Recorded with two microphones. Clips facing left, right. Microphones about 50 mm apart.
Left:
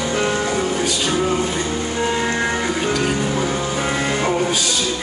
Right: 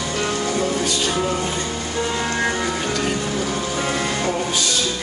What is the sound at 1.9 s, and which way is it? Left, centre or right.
Music, left.